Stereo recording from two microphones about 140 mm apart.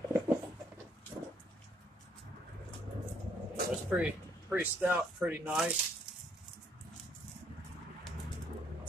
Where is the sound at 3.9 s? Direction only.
10° right (ahead or behind).